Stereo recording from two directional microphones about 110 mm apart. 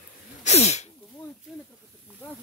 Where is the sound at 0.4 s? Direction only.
90° left.